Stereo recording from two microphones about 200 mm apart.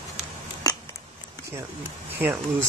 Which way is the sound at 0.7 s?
20° left (ahead or behind).